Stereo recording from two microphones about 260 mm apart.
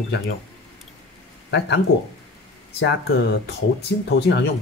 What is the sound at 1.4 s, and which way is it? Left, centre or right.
Speech, left.